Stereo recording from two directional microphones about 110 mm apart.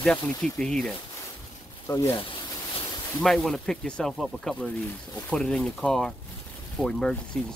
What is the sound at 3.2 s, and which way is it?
Speech, centre (ahead or behind).